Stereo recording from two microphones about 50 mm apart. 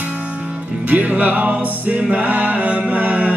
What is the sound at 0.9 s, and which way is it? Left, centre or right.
Music, right.